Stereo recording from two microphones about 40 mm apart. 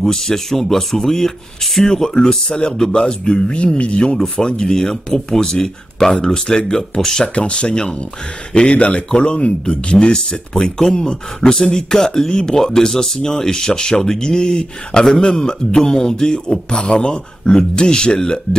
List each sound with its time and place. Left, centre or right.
0.0 s speech: centre
7.3 s speech: left